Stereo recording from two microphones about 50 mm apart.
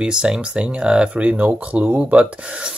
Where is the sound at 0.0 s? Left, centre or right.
Centre.